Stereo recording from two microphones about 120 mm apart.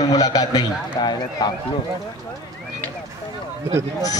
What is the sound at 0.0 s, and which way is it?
A man's voice, 30° left (ahead or behind).